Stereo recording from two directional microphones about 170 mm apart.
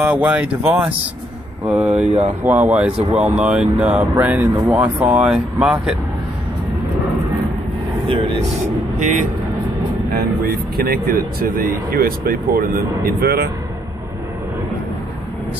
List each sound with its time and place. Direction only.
0.0 s speech: 10° right (ahead or behind)
9.0 s speech: 45° right (ahead or behind)
10.1 s speech: 65° right (ahead or behind)